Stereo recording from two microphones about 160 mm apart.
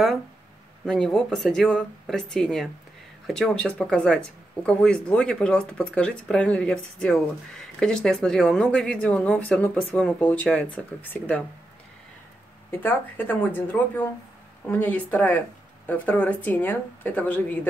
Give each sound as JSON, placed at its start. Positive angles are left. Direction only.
{"t": 0.8, "sound": "speech", "side_deg": 5}
{"t": 12.8, "sound": "speech", "side_deg": 10}